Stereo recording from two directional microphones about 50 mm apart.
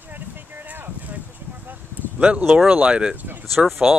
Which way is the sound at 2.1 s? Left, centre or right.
Right.